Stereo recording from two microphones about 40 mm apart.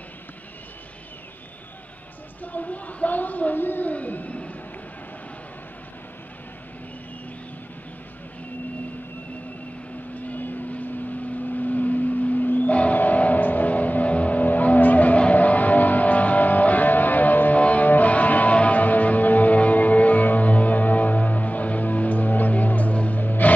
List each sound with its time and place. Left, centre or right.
2.4 s speech: left
3.9 s a sound: left
10.1 s vehicle: left
11.5 s music: left